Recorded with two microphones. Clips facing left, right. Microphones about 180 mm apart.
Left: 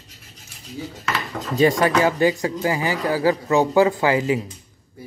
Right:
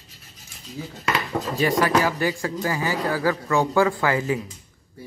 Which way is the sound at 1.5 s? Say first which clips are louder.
Left 4 dB; 25° left (ahead or behind).